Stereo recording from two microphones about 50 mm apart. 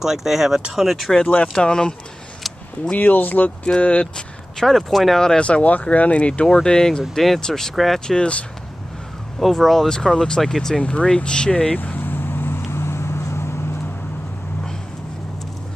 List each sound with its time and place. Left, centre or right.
0.0 s speech: centre
1.2 s speech: left
3.0 s speech: left
4.6 s speech: centre
5.2 s speech: centre
6.4 s speech: centre
7.7 s speech: centre
9.4 s speech: centre
10.8 s vehicle: left